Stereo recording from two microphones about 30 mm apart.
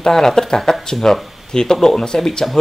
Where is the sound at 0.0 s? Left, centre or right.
Centre.